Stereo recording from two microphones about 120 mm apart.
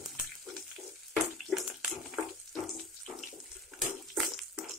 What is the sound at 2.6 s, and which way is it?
Water tap, centre (ahead or behind).